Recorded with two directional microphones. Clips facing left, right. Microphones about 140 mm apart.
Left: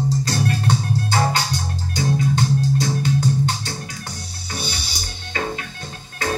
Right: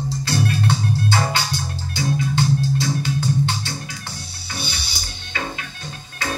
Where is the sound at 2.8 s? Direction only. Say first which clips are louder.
Left 2 dB; 35° left (ahead or behind).